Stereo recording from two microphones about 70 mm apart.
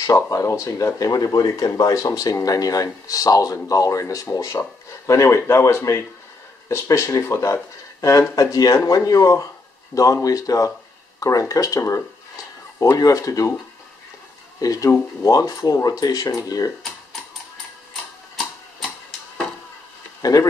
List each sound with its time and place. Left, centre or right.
0.0 s speech: left
14.6 s speech: left
20.2 s speech: left